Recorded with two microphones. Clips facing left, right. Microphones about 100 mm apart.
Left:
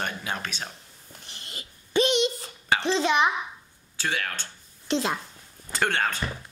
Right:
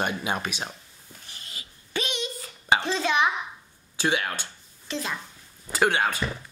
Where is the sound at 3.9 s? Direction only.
15° right (ahead or behind).